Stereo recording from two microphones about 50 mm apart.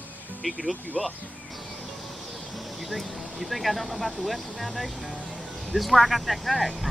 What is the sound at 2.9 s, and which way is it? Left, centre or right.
Speech, centre.